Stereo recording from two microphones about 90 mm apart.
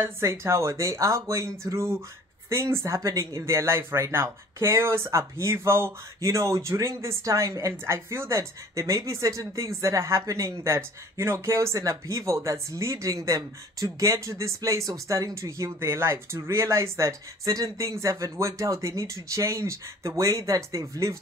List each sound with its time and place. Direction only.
0.0 s speech: 30° right (ahead or behind)
1.7 s a sound: 30° right (ahead or behind)
2.5 s speech: 35° right (ahead or behind)